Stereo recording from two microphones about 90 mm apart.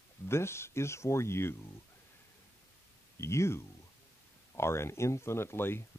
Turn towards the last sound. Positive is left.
turn(degrees=25)  # may be behind; listen again after turning